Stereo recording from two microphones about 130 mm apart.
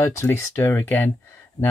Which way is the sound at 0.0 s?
20° left (ahead or behind).